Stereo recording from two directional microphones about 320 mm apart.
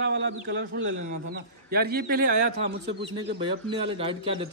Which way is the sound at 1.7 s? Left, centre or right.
Right.